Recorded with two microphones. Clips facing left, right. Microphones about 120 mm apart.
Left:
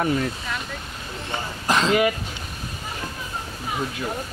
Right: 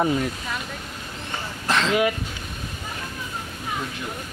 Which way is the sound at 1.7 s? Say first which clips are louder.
Left 2 dB; 15° left (ahead or behind).